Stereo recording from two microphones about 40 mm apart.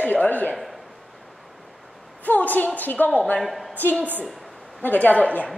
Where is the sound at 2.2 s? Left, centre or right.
Left.